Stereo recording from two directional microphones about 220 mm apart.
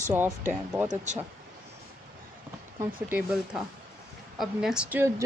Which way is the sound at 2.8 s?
10° right (ahead or behind).